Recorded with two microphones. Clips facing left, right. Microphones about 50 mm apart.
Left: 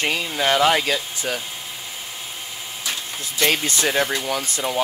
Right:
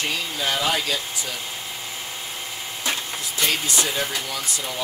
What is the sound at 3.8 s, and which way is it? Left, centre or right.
Speech, left.